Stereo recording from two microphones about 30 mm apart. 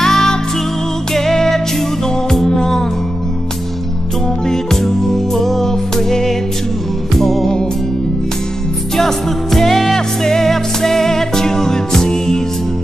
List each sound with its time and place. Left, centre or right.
0.0 s music: centre
4.5 s music: centre
8.9 s music: centre